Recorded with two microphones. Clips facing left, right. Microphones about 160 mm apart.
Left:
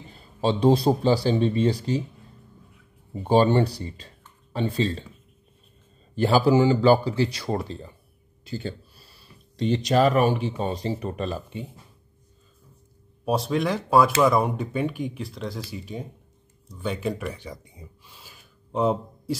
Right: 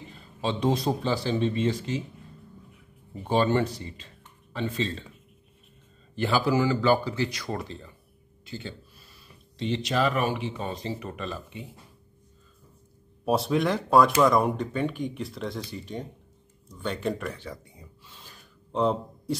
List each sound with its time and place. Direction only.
0.1 s speech: 35° left (ahead or behind)
3.1 s speech: 30° left (ahead or behind)
6.1 s speech: 40° left (ahead or behind)
6.5 s speech: 25° left (ahead or behind)
13.2 s speech: centre (ahead or behind)
16.7 s a sound: 5° left (ahead or behind)